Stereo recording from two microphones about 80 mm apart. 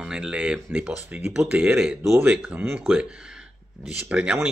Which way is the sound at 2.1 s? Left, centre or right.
Centre.